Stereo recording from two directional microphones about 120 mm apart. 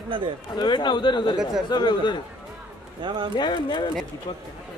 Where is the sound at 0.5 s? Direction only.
40° left (ahead or behind).